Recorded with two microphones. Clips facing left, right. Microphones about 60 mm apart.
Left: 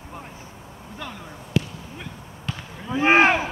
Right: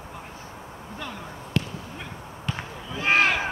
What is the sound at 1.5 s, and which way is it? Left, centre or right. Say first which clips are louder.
Basketball bounce: left 3 dB; centre.